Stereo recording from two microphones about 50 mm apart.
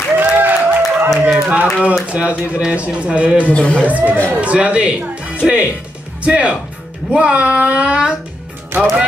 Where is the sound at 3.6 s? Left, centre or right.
Left.